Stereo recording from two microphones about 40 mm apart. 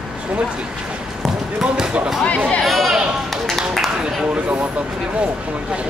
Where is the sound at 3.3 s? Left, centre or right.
Centre.